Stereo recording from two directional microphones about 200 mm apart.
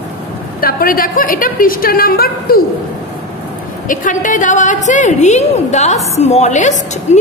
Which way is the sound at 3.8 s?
40° left (ahead or behind).